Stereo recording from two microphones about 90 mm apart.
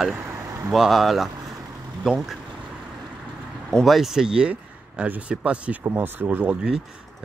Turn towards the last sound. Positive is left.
turn(degrees=-10)  # may be behind; listen again after turning